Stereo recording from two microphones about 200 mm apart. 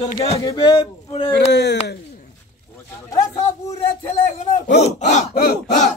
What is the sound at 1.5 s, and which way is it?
Speech, 60° left (ahead or behind).